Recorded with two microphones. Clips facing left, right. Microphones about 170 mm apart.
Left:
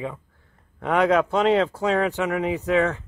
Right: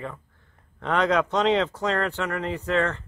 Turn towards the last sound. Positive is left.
turn(degrees=15)  # may be behind; listen again after turning